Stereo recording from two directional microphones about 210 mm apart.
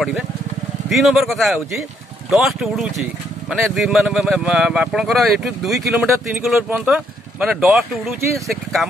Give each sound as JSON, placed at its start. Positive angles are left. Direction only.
{"t": 0.8, "sound": "speech", "side_deg": 0}